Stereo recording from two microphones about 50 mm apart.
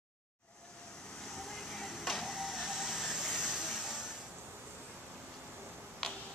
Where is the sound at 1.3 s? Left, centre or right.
Centre.